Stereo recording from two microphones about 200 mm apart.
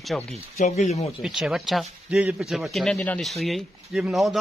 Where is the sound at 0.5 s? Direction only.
35° left (ahead or behind).